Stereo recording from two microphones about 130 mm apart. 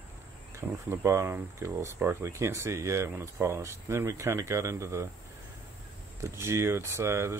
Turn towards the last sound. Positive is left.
turn(degrees=-20)  # may be behind; listen again after turning